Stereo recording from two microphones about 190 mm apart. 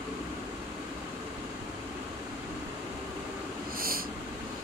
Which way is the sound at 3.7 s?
50° right (ahead or behind).